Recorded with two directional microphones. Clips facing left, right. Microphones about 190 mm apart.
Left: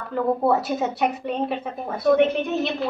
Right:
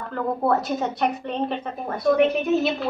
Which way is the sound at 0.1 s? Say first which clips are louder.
Left 2 dB; 10° left (ahead or behind).